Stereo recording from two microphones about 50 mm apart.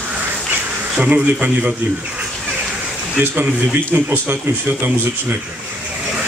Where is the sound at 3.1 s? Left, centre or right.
Right.